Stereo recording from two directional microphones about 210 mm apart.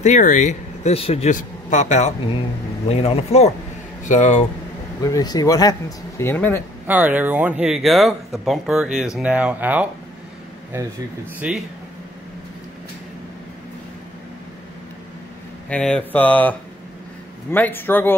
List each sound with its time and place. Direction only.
0.0 s a man's voice: 35° left (ahead or behind)
5.0 s speech: 20° left (ahead or behind)
6.9 s speech: 10° right (ahead or behind)
15.7 s speech: 5° left (ahead or behind)